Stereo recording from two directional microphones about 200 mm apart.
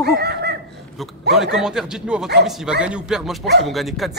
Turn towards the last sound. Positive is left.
turn(degrees=0)  # may be behind; listen again after turning